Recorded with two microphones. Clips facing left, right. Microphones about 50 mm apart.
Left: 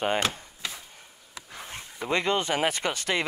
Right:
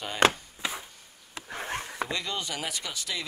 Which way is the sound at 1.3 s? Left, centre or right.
Right.